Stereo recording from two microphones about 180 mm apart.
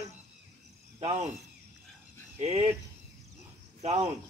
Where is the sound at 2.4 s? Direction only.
35° right (ahead or behind).